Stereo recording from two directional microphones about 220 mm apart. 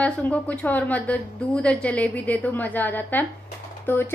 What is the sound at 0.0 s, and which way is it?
A woman's voice, 5° left (ahead or behind).